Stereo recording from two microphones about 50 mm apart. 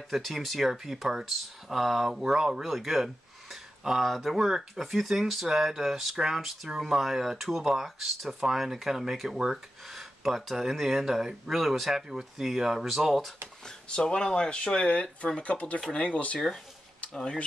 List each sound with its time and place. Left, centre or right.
0.1 s speech: centre
13.7 s speech: centre